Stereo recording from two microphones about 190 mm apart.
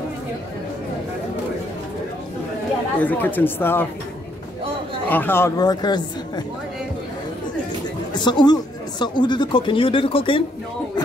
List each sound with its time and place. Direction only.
3.0 s speech: 10° left (ahead or behind)
5.1 s speech: 10° left (ahead or behind)
8.1 s speech: 25° left (ahead or behind)